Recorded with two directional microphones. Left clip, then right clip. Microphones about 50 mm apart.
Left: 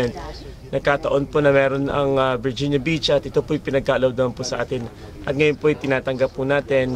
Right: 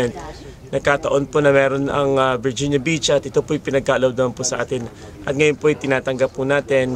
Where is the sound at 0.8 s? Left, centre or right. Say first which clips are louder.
Right 2 dB; right.